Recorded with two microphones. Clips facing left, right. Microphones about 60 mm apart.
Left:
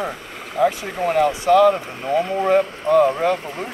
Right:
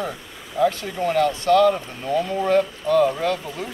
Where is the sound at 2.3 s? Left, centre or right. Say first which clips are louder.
Left 1 dB; left.